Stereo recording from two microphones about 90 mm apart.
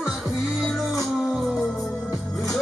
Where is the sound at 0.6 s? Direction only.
Centre (ahead or behind).